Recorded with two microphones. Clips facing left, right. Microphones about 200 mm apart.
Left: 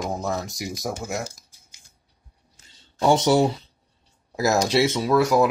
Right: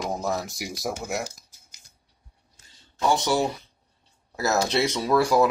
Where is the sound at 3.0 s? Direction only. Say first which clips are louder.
Left 5 dB; 20° left (ahead or behind).